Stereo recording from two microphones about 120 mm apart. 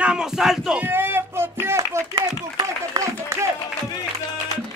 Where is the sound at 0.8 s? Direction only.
20° right (ahead or behind).